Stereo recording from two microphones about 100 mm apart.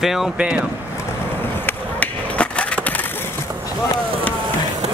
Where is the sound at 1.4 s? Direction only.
20° left (ahead or behind).